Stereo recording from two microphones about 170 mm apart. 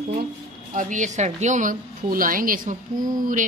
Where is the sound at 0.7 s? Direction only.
50° right (ahead or behind).